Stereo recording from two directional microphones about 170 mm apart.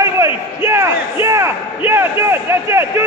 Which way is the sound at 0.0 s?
15° right (ahead or behind).